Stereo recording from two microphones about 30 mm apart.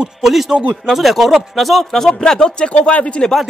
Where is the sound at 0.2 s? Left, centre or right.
Centre.